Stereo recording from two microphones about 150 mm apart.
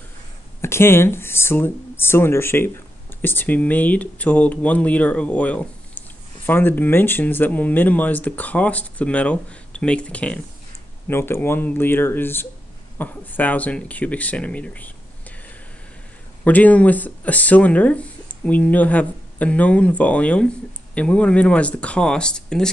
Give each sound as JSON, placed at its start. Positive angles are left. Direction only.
{"t": 0.6, "sound": "speech", "side_deg": 15}
{"t": 16.4, "sound": "speech", "side_deg": 10}